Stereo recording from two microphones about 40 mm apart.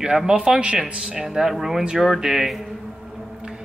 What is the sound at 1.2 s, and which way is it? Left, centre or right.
Speech, centre.